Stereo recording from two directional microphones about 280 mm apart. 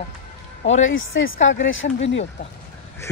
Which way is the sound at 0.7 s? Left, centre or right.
Left.